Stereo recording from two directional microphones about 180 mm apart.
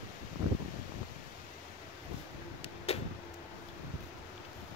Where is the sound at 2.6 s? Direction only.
35° left (ahead or behind).